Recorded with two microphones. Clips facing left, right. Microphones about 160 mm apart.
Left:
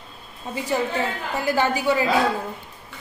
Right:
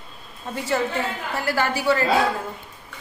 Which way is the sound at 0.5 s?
15° left (ahead or behind).